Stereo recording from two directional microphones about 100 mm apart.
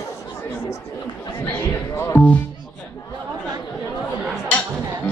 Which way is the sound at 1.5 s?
20° left (ahead or behind).